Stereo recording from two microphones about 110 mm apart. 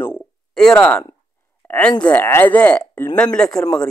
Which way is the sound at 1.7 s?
10° left (ahead or behind).